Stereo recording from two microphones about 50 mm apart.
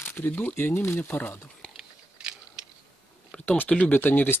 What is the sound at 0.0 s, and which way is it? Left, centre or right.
Speech, left.